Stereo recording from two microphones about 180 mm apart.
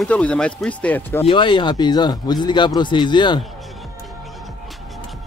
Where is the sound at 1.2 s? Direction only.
25° left (ahead or behind).